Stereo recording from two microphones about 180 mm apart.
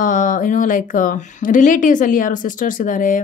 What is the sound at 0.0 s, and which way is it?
Speech, 45° left (ahead or behind).